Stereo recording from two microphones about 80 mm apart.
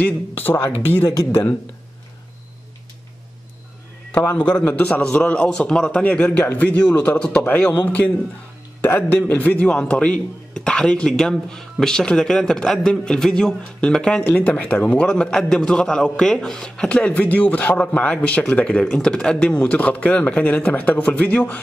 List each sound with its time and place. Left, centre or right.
0.0 s a man's voice: left
4.1 s a man's voice: left